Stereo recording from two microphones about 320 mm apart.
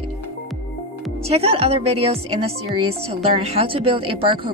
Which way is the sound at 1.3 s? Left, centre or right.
Centre.